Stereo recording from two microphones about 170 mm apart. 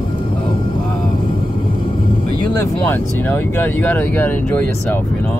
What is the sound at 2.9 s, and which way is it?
Speech, 10° left (ahead or behind).